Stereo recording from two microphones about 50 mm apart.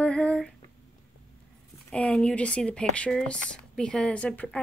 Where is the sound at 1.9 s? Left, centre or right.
Left.